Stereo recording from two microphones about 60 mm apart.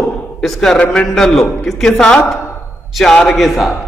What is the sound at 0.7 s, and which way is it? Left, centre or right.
Speech, left.